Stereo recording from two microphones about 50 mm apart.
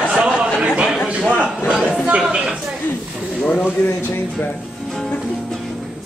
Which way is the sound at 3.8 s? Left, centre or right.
Left.